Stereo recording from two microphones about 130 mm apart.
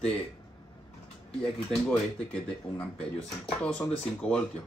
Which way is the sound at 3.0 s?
10° left (ahead or behind).